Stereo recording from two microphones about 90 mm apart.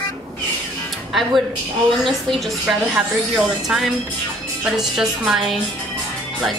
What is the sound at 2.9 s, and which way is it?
A woman's voice, 10° right (ahead or behind).